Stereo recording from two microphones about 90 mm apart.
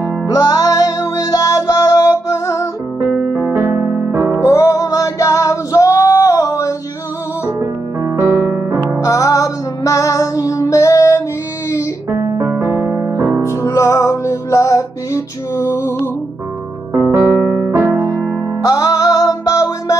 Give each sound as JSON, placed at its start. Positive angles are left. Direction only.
{"t": 0.0, "sound": "music", "side_deg": 40}
{"t": 3.0, "sound": "music", "side_deg": -25}
{"t": 4.5, "sound": "female singing", "side_deg": 35}
{"t": 8.0, "sound": "music", "side_deg": -25}
{"t": 9.0, "sound": "music", "side_deg": 40}
{"t": 12.1, "sound": "music", "side_deg": -35}
{"t": 13.4, "sound": "music", "side_deg": 30}
{"t": 17.0, "sound": "keyboard", "side_deg": -25}
{"t": 18.6, "sound": "music", "side_deg": 40}